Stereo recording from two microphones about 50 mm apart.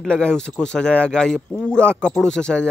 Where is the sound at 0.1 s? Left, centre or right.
Centre.